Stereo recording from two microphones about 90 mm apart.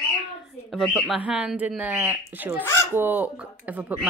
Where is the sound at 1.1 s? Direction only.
15° right (ahead or behind).